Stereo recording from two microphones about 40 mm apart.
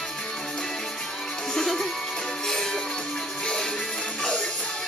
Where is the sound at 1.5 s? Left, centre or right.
Centre.